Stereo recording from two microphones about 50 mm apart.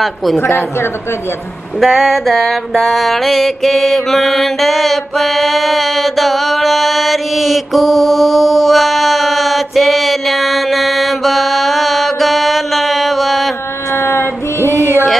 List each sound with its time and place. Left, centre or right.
0.0 s a woman's voice: centre
1.8 s mantra: centre
13.9 s child singing: left